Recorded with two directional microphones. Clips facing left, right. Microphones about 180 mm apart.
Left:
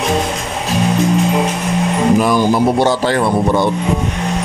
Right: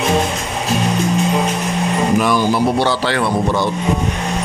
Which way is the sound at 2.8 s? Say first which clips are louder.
Left 3 dB; 45° left (ahead or behind).